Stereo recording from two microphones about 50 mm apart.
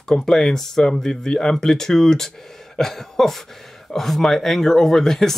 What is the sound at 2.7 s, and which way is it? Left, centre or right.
Cough, centre.